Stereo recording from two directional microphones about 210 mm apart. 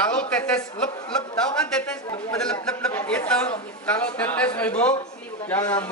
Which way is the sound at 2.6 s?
5° left (ahead or behind).